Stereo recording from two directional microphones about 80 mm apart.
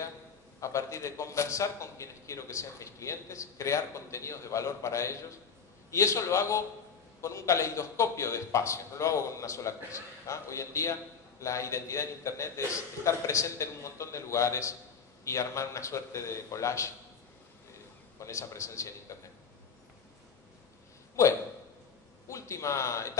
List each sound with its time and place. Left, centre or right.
0.6 s a man's voice: left
18.2 s a man's voice: left
22.3 s a man's voice: left